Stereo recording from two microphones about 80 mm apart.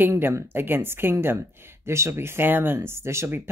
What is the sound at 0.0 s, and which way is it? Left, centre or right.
Speech, right.